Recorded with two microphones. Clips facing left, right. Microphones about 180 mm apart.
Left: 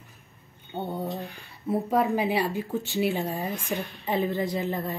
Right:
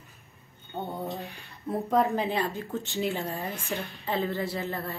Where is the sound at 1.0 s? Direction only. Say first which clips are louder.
Left 2 dB; centre (ahead or behind).